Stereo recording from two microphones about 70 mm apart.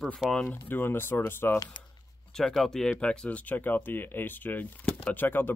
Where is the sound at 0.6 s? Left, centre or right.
Left.